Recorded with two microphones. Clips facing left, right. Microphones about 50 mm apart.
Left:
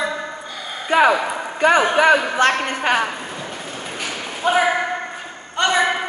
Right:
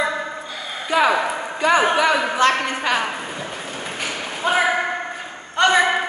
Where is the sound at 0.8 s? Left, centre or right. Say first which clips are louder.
Left 2 dB; left.